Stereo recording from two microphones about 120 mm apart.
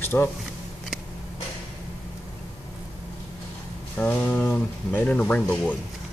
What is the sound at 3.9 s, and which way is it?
Speech, 10° left (ahead or behind).